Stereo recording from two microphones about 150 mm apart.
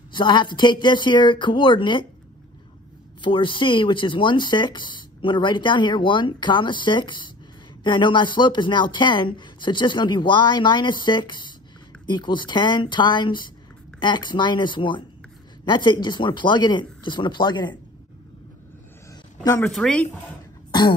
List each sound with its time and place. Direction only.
0.1 s speech: 30° left (ahead or behind)
3.2 s speech: 35° left (ahead or behind)
19.4 s a woman's voice: 15° left (ahead or behind)
19.7 s speech: 5° left (ahead or behind)
20.7 s throat clearing: 30° left (ahead or behind)